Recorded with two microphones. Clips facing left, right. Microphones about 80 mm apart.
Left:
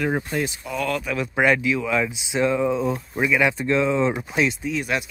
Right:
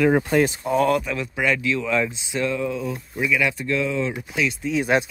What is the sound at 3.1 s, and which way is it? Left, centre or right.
Speech, left.